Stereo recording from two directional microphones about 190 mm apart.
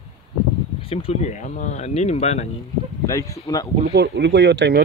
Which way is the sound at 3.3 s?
15° left (ahead or behind).